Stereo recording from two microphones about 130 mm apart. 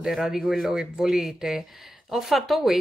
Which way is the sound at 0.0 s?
5° right (ahead or behind).